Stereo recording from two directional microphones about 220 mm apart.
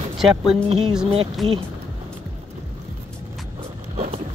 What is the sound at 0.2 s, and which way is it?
Speech, centre (ahead or behind).